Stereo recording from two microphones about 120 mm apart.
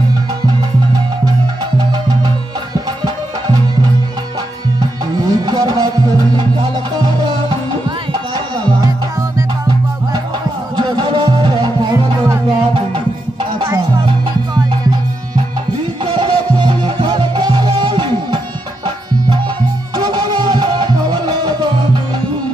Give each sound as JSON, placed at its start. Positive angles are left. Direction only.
{"t": 1.8, "sound": "music", "side_deg": -40}
{"t": 4.7, "sound": "music", "side_deg": -35}
{"t": 10.8, "sound": "music", "side_deg": -40}
{"t": 16.0, "sound": "music", "side_deg": -40}
{"t": 20.0, "sound": "music", "side_deg": -35}